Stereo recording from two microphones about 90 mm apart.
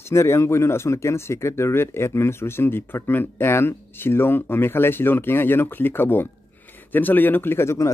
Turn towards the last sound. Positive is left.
turn(degrees=30)  # may be behind; listen again after turning